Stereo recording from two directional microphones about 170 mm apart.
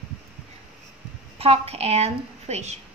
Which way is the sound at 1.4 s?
35° right (ahead or behind).